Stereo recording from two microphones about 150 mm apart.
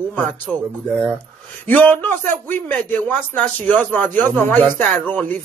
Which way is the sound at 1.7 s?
10° left (ahead or behind).